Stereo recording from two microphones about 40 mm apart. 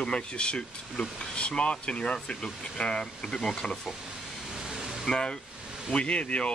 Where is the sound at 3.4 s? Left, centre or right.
Centre.